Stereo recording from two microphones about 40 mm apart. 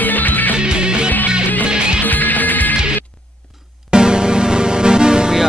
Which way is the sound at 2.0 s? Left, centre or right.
Left.